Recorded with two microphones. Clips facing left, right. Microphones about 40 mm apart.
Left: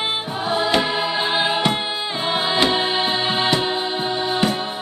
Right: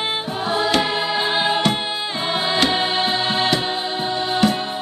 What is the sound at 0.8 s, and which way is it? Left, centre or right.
Choir, centre.